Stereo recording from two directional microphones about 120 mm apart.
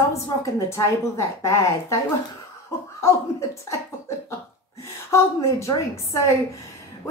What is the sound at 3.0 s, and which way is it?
Speech, 25° left (ahead or behind).